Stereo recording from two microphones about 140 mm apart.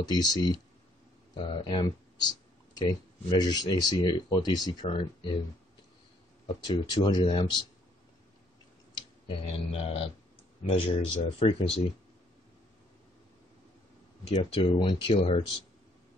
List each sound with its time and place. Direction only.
0.0 s speech: 30° left (ahead or behind)
6.7 s speech: 30° left (ahead or behind)
8.9 s speech: 40° left (ahead or behind)
14.3 s speech: 40° left (ahead or behind)